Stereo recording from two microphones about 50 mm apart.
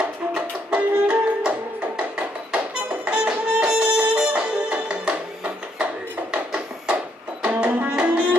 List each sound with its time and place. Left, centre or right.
0.7 s music: right
6.3 s a sound: right
7.4 s music: right